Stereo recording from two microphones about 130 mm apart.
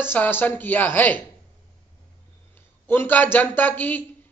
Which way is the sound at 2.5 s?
15° left (ahead or behind).